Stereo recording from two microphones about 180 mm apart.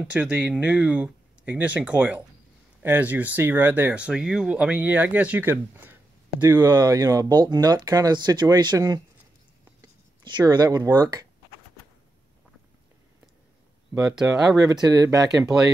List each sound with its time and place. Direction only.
0.0 s speech: 5° right (ahead or behind)
6.5 s speech: 20° right (ahead or behind)
14.1 s speech: 5° right (ahead or behind)
14.7 s speech: 20° right (ahead or behind)